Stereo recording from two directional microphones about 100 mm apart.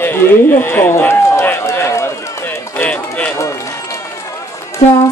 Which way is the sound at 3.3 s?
30° left (ahead or behind).